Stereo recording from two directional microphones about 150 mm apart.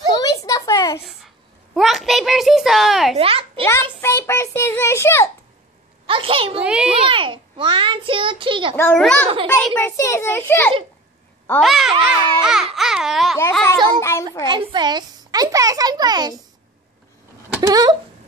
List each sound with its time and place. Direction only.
0.1 s a sound: 25° left (ahead or behind)
1.0 s a sound: centre (ahead or behind)
3.2 s a child's voice: 40° right (ahead or behind)
3.6 s a child's voice: 15° left (ahead or behind)
6.0 s a child's voice: 35° right (ahead or behind)
6.6 s a child's voice: 5° right (ahead or behind)
6.9 s a child's voice: 35° right (ahead or behind)
8.7 s a child's voice: 10° left (ahead or behind)
9.8 s a child's voice: 20° left (ahead or behind)
11.6 s a child's voice: centre (ahead or behind)
13.9 s a child's voice: 20° left (ahead or behind)
14.4 s a child's voice: 30° right (ahead or behind)
17.6 s a child's voice: 25° right (ahead or behind)